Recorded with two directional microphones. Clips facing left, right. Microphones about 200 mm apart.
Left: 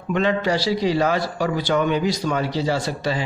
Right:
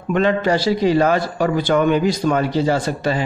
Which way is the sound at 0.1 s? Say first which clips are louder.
Right 3 dB; 50° right (ahead or behind).